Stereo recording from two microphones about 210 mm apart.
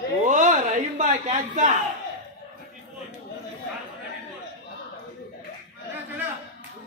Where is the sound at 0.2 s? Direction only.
35° right (ahead or behind).